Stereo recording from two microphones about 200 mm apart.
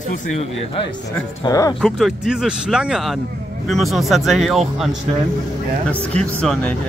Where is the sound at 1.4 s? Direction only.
20° left (ahead or behind).